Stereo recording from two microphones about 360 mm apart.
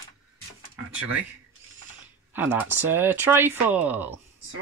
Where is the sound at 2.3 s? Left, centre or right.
Centre.